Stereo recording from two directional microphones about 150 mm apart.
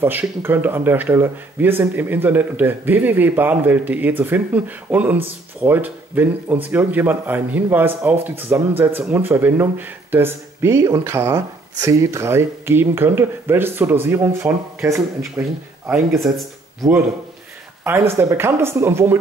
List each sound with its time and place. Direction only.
0.0 s speech: 15° right (ahead or behind)
17.8 s speech: 15° right (ahead or behind)